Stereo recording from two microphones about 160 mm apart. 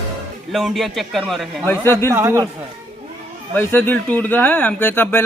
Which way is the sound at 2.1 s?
20° right (ahead or behind).